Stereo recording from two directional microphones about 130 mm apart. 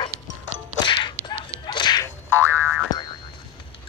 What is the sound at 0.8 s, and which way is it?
Whip, 35° left (ahead or behind).